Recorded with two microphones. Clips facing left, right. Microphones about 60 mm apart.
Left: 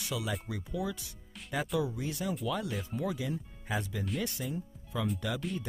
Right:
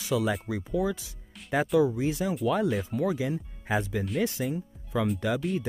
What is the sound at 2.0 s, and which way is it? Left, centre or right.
Speech, right.